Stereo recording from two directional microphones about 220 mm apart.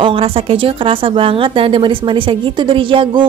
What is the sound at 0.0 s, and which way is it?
A woman's voice, 25° right (ahead or behind).